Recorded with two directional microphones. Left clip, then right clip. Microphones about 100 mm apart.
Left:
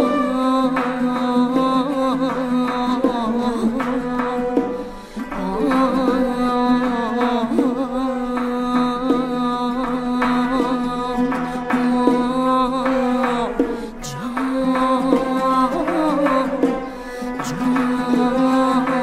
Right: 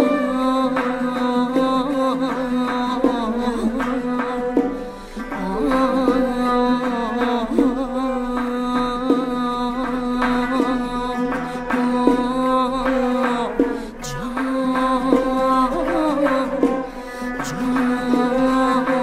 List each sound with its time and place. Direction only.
0.4 s music: 15° right (ahead or behind)
5.8 s music: 15° right (ahead or behind)
8.7 s music: 15° right (ahead or behind)
11.9 s music: 15° right (ahead or behind)
14.9 s music: 15° right (ahead or behind)
18.2 s mantra: 15° right (ahead or behind)